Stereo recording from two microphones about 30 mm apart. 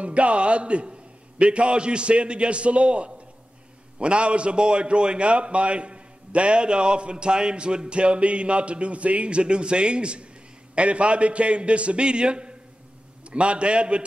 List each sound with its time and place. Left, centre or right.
0.0 s a man's voice: right